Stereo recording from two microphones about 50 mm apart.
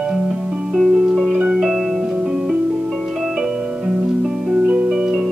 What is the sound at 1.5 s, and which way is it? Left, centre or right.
Music, centre.